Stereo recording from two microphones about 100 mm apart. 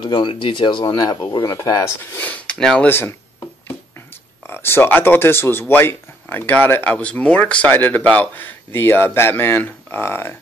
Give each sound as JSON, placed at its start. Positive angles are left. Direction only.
{"t": 0.0, "sound": "speech", "side_deg": 50}
{"t": 0.8, "sound": "speech", "side_deg": 40}
{"t": 2.1, "sound": "speech", "side_deg": 15}
{"t": 2.9, "sound": "a sound", "side_deg": 25}
{"t": 4.5, "sound": "speech", "side_deg": 25}